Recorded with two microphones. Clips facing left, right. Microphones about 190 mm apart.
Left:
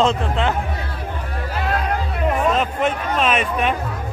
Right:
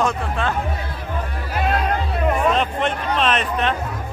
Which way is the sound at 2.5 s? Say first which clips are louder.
Left 1 dB; 5° left (ahead or behind).